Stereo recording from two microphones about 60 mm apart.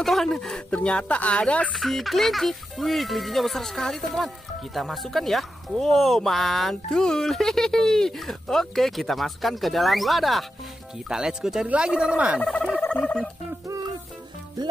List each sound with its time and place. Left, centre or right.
0.0 s speech: centre
0.7 s speech: centre
1.7 s speech: centre
11.1 s speech: centre
12.8 s turkey: centre